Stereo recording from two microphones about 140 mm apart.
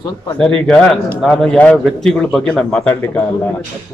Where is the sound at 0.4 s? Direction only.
5° left (ahead or behind).